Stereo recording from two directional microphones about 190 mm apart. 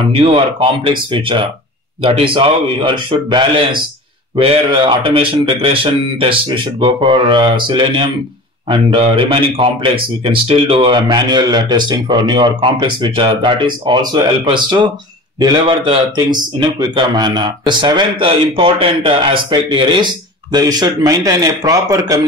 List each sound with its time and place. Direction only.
0.2 s a man's voice: 30° right (ahead or behind)